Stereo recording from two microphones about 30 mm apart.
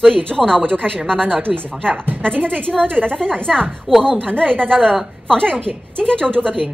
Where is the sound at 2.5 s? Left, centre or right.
Left.